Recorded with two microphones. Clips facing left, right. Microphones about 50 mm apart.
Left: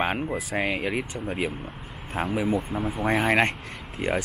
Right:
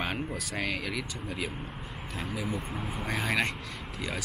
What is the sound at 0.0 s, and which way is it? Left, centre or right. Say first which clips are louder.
Speech: left 7 dB; left.